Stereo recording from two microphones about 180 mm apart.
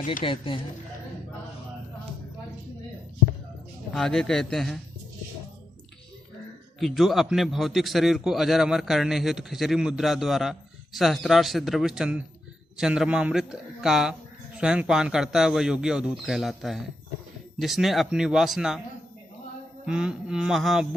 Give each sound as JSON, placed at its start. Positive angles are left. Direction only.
{"t": 0.2, "sound": "speech", "side_deg": 30}
{"t": 3.9, "sound": "a man's voice", "side_deg": 0}
{"t": 6.8, "sound": "a man's voice", "side_deg": 0}
{"t": 19.9, "sound": "a man's voice", "side_deg": -5}